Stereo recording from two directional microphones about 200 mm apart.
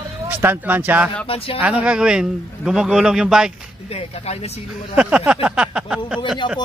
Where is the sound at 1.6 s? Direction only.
5° right (ahead or behind).